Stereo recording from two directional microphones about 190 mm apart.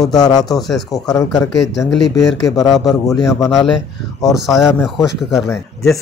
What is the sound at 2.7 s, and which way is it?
Speech, centre (ahead or behind).